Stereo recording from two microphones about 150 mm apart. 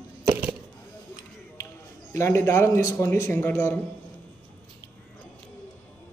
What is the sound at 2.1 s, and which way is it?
A man's voice, 15° left (ahead or behind).